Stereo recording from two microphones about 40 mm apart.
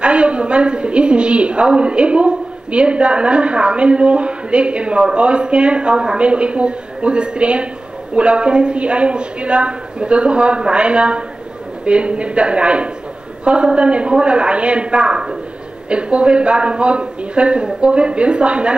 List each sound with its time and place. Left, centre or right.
0.0 s a woman's voice: right